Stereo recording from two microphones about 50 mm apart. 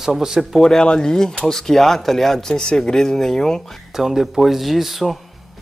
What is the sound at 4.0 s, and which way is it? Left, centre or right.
Speech, centre.